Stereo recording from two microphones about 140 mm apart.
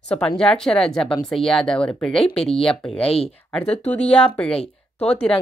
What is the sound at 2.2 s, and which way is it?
Speech, 45° left (ahead or behind).